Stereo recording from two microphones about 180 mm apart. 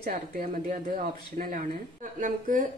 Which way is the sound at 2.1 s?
45° right (ahead or behind).